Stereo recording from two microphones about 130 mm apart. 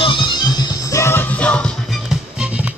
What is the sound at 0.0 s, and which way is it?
Music, 35° left (ahead or behind).